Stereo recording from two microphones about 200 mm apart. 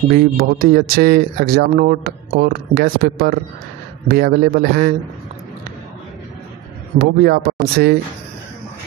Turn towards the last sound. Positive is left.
turn(degrees=-50)  # may be behind; listen again after turning